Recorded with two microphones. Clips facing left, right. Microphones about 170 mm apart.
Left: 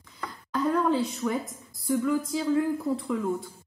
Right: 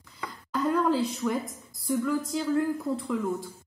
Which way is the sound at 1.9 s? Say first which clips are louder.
Left 2 dB; 5° left (ahead or behind).